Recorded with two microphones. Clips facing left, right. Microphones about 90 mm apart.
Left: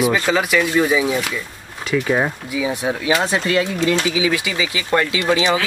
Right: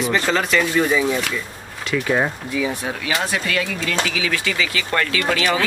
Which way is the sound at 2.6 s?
20° left (ahead or behind).